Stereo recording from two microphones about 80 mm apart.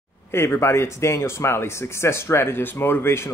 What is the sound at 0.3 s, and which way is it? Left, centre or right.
Speech, left.